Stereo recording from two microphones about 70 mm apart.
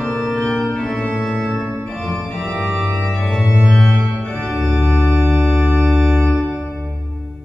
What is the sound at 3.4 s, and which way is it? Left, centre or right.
Organ, centre.